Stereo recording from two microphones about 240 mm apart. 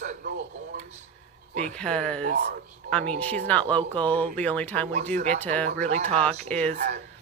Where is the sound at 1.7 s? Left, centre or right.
Centre.